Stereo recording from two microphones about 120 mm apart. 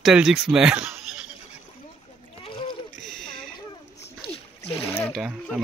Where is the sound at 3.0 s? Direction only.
5° left (ahead or behind).